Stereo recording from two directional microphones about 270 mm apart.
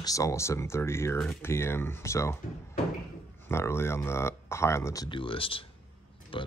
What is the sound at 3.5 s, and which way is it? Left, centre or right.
Speech, centre.